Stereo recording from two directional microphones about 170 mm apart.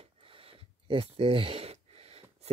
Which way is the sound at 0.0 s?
35° right (ahead or behind).